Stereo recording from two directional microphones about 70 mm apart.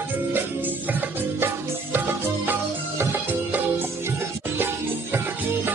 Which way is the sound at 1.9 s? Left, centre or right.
Right.